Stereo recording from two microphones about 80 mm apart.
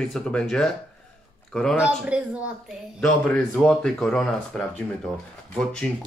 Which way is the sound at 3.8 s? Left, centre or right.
Centre.